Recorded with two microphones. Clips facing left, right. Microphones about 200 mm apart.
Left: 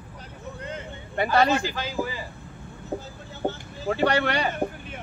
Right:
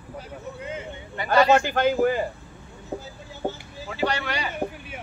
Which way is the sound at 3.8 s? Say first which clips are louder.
Left 4 dB; 55° left (ahead or behind).